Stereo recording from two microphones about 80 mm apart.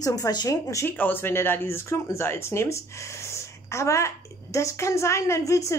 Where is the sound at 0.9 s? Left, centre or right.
Left.